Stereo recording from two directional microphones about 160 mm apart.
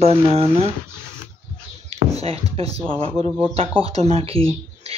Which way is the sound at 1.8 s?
40° right (ahead or behind).